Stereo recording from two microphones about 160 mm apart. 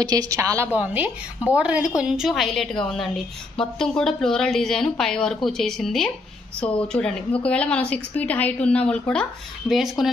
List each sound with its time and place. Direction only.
0.0 s a woman's voice: 25° right (ahead or behind); by 10.0 s centre (ahead or behind)